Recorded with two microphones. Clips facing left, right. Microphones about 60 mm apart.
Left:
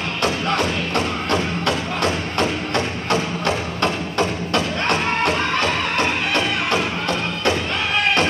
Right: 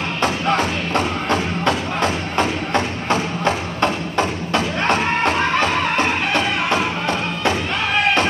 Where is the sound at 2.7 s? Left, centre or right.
Centre.